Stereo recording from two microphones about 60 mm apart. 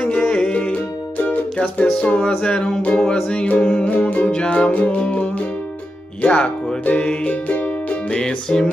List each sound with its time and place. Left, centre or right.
0.0 s music: left
7.5 s music: left
8.1 s music: centre